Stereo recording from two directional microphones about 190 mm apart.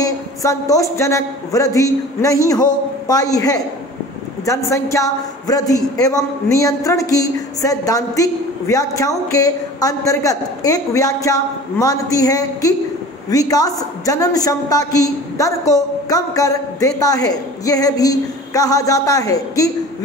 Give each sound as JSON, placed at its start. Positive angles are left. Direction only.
{"t": 0.0, "sound": "a woman's voice", "side_deg": 15}